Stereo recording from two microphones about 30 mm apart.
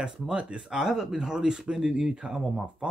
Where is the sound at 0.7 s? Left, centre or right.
Centre.